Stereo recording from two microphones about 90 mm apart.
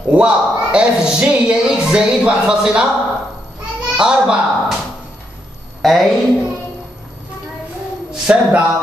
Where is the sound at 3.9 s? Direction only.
10° right (ahead or behind).